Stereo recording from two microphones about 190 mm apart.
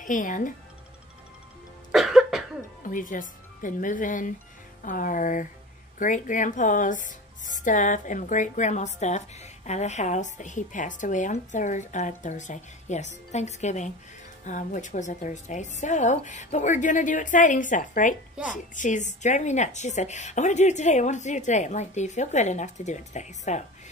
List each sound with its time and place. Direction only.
0.0 s speech: 45° left (ahead or behind)
1.9 s cough: centre (ahead or behind)
2.8 s speech: 45° left (ahead or behind)